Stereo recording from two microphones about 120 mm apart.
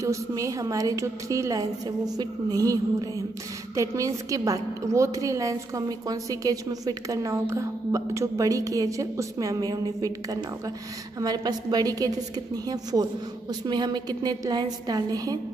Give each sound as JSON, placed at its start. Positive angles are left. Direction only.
{"t": 0.0, "sound": "a woman's voice", "side_deg": -25}
{"t": 13.7, "sound": "a woman's voice", "side_deg": -35}